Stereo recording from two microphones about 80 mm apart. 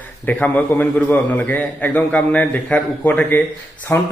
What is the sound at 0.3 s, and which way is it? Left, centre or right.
A man's voice, centre.